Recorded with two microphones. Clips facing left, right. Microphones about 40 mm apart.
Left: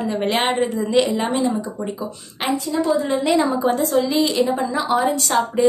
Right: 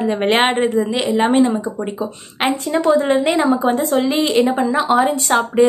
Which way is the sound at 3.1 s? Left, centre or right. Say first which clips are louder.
Right 3 dB; right.